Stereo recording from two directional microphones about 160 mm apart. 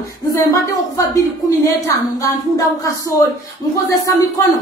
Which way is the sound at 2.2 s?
20° left (ahead or behind).